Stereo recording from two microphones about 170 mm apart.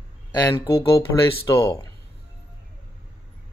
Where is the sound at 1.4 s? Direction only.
20° left (ahead or behind).